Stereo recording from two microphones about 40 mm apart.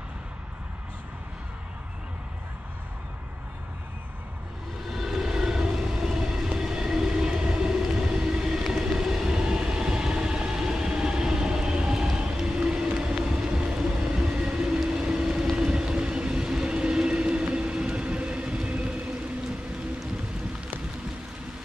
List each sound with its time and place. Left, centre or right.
4.9 s vehicle: centre
5.9 s train: centre
12.5 s a sound: centre
13.2 s vehicle: centre
14.8 s train: centre